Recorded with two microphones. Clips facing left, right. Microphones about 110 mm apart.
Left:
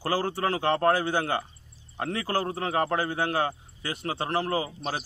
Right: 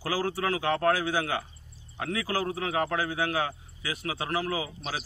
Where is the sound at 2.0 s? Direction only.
35° left (ahead or behind).